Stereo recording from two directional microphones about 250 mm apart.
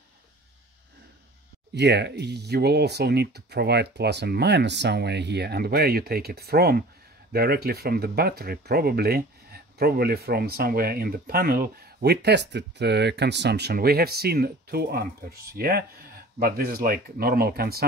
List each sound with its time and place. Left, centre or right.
1.8 s speech: right